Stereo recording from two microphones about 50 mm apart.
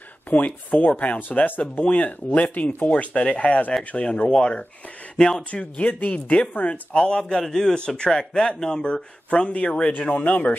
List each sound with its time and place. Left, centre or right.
0.3 s speech: left
7.0 s speech: centre; by 10.6 s left